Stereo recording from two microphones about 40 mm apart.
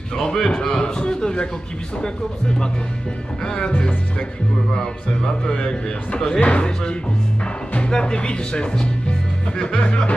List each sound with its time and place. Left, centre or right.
0.2 s a man's voice: centre
3.5 s a man's voice: left
6.4 s a man's voice: left
7.9 s a man's voice: left